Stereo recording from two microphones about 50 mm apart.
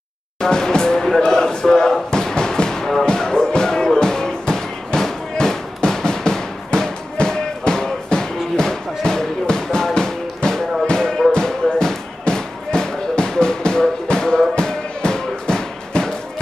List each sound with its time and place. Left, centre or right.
0.4 s music: centre